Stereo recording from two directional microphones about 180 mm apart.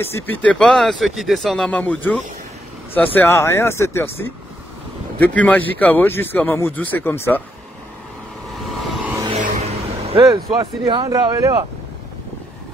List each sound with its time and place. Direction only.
0.0 s speech: 10° left (ahead or behind)
5.2 s speech: 10° left (ahead or behind)
8.6 s vehicle: centre (ahead or behind)
9.3 s vehicle: 40° right (ahead or behind)
11.1 s speech: 20° right (ahead or behind)